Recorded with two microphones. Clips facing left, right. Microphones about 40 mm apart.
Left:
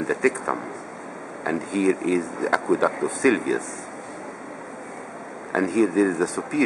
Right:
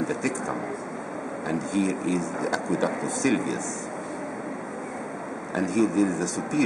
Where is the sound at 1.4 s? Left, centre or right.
Centre.